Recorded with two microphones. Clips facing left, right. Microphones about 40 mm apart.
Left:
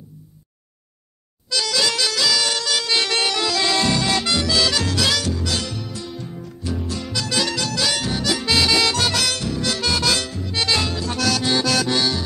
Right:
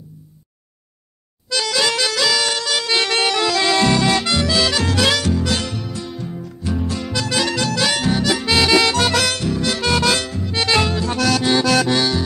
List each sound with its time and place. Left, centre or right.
1.5 s music: right
2.6 s music: right
3.0 s music: right
4.8 s music: right